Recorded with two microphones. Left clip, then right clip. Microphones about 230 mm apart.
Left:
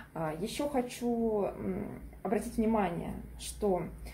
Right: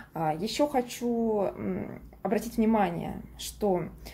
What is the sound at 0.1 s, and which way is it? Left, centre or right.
Speech, right.